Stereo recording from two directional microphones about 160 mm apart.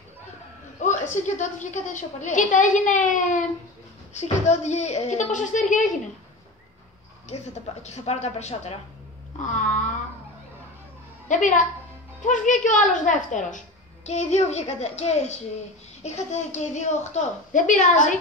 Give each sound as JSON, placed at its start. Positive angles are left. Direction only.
{"t": 0.7, "sound": "a woman's voice", "side_deg": 50}
{"t": 7.8, "sound": "a woman's voice", "side_deg": 45}
{"t": 11.2, "sound": "a woman's voice", "side_deg": 50}